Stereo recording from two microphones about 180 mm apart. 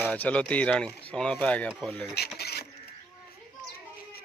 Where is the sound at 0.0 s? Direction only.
10° left (ahead or behind).